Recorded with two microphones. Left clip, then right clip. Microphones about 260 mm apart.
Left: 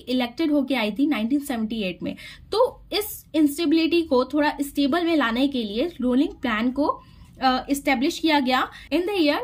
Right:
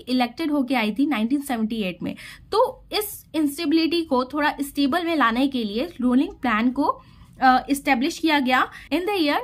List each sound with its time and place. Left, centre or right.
0.0 s a woman's voice: centre